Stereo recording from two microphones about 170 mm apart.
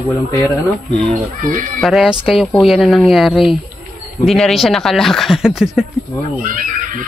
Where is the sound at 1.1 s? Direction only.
50° right (ahead or behind).